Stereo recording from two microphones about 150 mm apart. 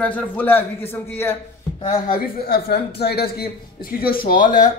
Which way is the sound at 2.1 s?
90° left.